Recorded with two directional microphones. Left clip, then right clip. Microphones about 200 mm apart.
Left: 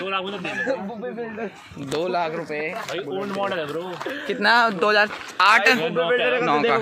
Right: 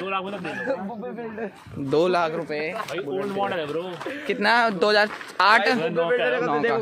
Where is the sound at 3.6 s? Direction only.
15° left (ahead or behind).